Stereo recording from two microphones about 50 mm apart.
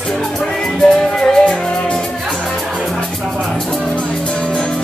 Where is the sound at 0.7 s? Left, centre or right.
Centre.